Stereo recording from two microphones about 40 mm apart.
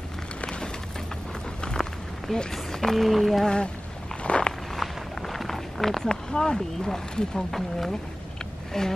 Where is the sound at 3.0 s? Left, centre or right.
Centre.